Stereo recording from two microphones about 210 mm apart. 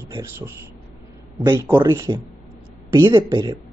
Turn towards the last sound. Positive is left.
turn(degrees=-20)  # may be behind; listen again after turning